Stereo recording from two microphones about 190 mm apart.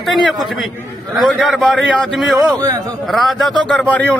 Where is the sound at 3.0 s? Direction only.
Centre (ahead or behind).